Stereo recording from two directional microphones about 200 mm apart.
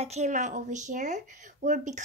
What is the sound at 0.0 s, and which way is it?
A woman's voice, 35° right (ahead or behind).